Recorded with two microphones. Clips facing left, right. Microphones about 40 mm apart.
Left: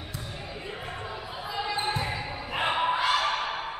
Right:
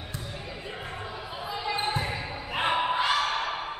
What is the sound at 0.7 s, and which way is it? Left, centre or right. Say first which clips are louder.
Basketball bounce: left 1 dB; centre.